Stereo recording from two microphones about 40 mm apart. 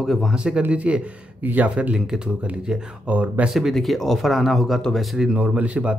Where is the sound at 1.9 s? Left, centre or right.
Centre.